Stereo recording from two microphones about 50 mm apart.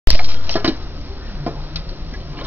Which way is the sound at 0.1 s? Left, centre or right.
Right.